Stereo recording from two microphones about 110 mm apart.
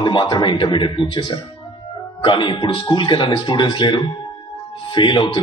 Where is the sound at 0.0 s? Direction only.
45° left (ahead or behind).